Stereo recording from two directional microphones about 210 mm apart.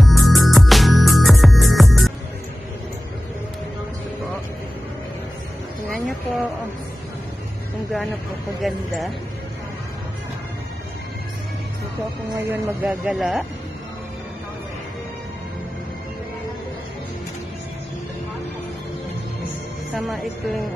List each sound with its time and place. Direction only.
0.0 s music: centre (ahead or behind)
5.9 s a sound: centre (ahead or behind)
8.5 s speech: centre (ahead or behind)
12.4 s speech: 10° right (ahead or behind)
19.9 s speech: centre (ahead or behind)